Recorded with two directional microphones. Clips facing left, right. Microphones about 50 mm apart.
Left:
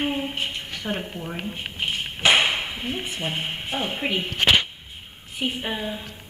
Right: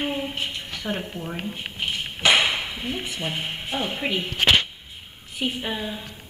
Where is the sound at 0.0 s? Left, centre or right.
Centre.